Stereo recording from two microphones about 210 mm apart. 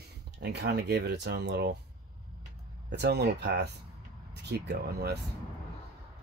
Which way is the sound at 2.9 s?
50° right (ahead or behind).